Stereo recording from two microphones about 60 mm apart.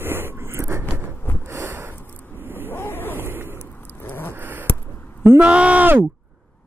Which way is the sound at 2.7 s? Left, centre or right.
Left.